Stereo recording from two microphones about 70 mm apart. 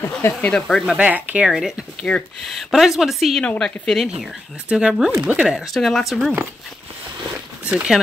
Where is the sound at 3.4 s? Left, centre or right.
Centre.